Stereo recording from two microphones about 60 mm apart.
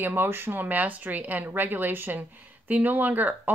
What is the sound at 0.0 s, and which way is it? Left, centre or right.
A woman's voice, right.